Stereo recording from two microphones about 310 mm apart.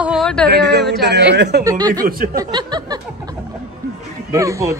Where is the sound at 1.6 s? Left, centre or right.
Centre.